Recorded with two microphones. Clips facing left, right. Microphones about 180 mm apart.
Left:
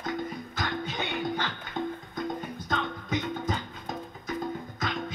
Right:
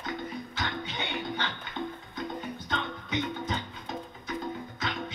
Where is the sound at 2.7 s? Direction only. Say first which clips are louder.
Left 4 dB; 45° left (ahead or behind).